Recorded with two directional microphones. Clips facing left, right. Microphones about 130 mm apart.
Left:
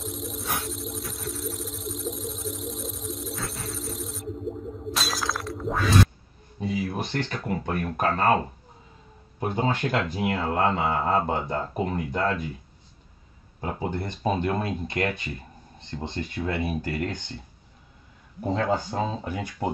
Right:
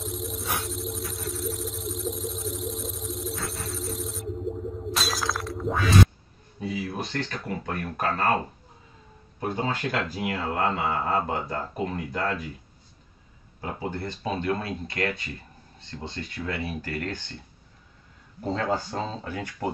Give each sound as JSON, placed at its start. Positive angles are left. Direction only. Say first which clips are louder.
{"t": 0.0, "sound": "a sound", "louder": "right 1 dB", "side_deg": 0}
{"t": 4.9, "sound": "breaking", "louder": "even", "side_deg": 0}
{"t": 6.6, "sound": "a sound", "louder": "left 2 dB", "side_deg": 20}
{"t": 7.6, "sound": "speech", "louder": "left 3 dB", "side_deg": 20}
{"t": 9.4, "sound": "speech", "louder": "left 2 dB", "side_deg": 20}
{"t": 13.6, "sound": "speech", "louder": "left 2 dB", "side_deg": 20}
{"t": 18.4, "sound": "speech", "louder": "left 2 dB", "side_deg": 15}